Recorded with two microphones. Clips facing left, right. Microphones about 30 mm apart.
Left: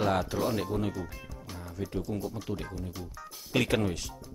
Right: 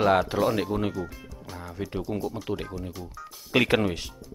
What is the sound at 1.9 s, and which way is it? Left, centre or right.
Speech, right.